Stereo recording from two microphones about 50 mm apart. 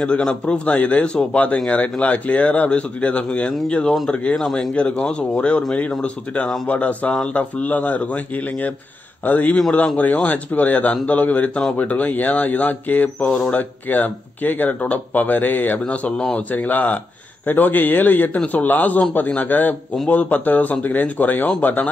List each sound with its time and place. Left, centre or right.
0.0 s speech: centre